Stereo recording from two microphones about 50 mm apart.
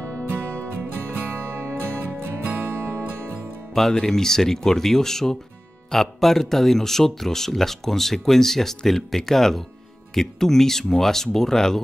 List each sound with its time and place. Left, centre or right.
0.7 s music: right
2.4 s music: right
3.7 s speech: centre